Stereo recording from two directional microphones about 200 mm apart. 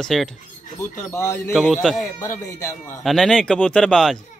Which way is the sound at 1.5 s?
Centre (ahead or behind).